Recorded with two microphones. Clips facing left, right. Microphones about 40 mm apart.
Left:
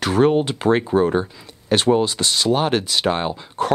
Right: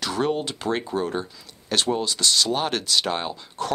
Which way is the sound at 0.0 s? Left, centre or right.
Left.